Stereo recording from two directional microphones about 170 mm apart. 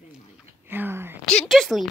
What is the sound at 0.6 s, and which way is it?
Speech, 10° right (ahead or behind).